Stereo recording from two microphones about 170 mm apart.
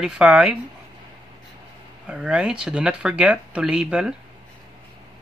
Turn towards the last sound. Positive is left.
turn(degrees=-5)  # may be behind; listen again after turning